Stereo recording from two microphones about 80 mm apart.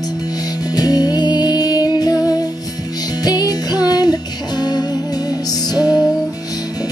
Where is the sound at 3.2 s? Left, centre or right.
Left.